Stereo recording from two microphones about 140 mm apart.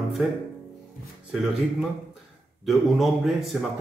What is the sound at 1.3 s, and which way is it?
A man's voice, 5° right (ahead or behind).